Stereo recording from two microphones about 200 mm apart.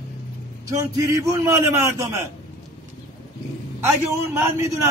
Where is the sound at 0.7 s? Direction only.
15° right (ahead or behind).